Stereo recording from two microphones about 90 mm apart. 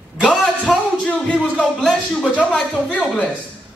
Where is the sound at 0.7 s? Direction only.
10° left (ahead or behind).